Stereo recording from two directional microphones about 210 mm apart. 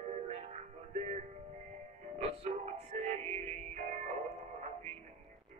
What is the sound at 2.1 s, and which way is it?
Music, 30° right (ahead or behind).